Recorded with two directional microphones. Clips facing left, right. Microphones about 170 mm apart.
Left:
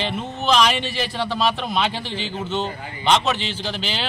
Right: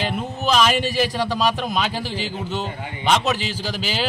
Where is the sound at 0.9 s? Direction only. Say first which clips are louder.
Right 3 dB; 10° right (ahead or behind).